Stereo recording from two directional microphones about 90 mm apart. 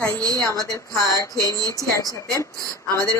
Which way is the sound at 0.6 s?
40° right (ahead or behind).